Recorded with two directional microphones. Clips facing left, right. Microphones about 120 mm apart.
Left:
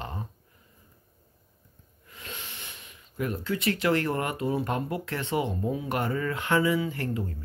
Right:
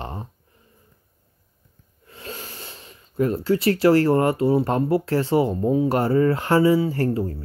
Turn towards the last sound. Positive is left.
turn(degrees=-35)  # may be behind; listen again after turning